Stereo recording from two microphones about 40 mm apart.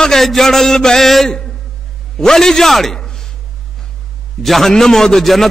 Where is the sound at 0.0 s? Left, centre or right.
Centre.